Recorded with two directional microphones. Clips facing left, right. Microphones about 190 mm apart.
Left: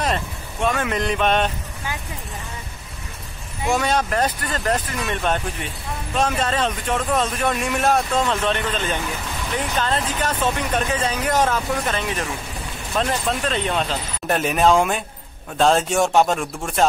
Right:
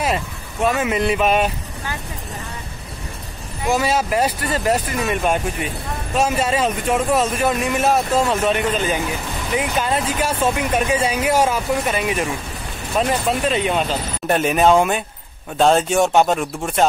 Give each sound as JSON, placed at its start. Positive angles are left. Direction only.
{"t": 0.0, "sound": "speech", "side_deg": -5}
{"t": 3.6, "sound": "speech", "side_deg": -5}